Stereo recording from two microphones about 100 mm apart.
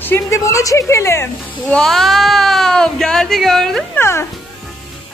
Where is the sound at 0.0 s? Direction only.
25° left (ahead or behind).